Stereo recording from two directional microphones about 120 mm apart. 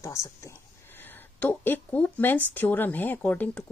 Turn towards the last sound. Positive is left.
turn(degrees=15)  # may be behind; listen again after turning